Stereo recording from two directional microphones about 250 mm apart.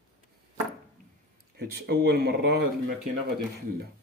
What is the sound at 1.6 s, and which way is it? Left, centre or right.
Speech, right.